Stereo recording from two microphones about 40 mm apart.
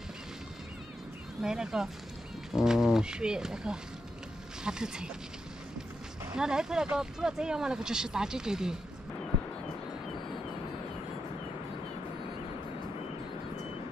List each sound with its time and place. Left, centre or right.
1.4 s speech: centre
6.3 s speech: centre